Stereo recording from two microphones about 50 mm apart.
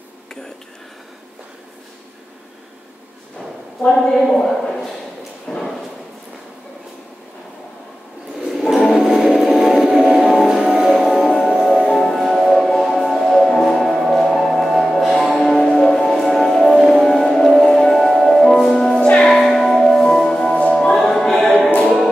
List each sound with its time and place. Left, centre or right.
3.9 s a woman's voice: centre
5.5 s a sound: centre
8.4 s music: centre
11.1 s music: centre
15.3 s music: centre
15.8 s music: centre
18.0 s music: centre